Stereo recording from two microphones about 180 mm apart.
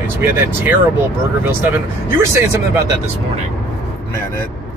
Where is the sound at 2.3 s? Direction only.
15° right (ahead or behind).